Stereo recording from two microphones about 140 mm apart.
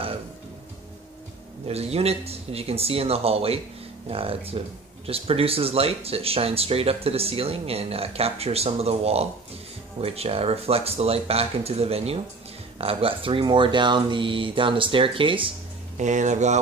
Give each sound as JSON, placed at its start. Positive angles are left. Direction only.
{"t": 1.7, "sound": "speech", "side_deg": -45}
{"t": 16.0, "sound": "speech", "side_deg": -60}